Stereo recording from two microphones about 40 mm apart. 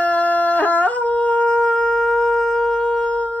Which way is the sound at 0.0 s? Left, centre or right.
Left.